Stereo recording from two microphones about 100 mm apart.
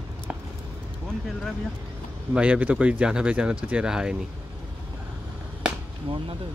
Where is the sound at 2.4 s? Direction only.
15° right (ahead or behind).